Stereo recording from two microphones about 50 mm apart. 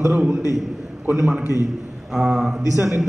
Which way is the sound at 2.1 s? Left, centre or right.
Centre.